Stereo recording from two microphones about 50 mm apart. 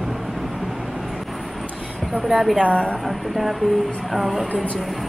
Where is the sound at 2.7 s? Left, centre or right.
Left.